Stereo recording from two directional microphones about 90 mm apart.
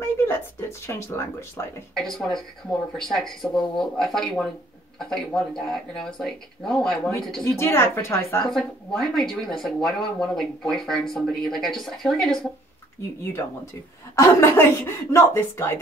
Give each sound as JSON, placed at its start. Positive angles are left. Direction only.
{"t": 0.2, "sound": "speech", "side_deg": 30}
{"t": 2.0, "sound": "speech", "side_deg": 5}
{"t": 7.4, "sound": "a woman's voice", "side_deg": 30}
{"t": 8.5, "sound": "speech", "side_deg": 0}
{"t": 14.1, "sound": "a woman's voice", "side_deg": 30}